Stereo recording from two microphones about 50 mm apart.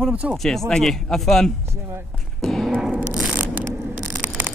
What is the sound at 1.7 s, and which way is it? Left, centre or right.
Speech, right.